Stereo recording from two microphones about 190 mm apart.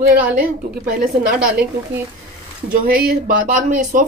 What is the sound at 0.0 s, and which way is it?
Speech, 50° right (ahead or behind).